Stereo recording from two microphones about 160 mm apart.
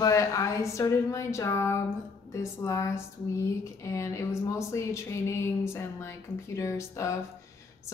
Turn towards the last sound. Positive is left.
turn(degrees=20)  # may be behind; listen again after turning